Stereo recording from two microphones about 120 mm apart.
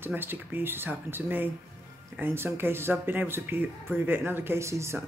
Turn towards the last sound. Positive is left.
turn(degrees=-25)  # may be behind; listen again after turning